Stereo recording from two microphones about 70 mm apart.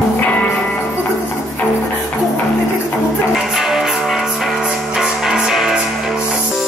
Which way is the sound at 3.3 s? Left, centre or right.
Centre.